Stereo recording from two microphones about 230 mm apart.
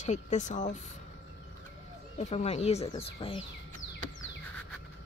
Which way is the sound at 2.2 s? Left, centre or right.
Left.